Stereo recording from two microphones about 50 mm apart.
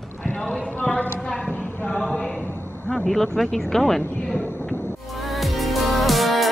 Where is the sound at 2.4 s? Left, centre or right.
Left.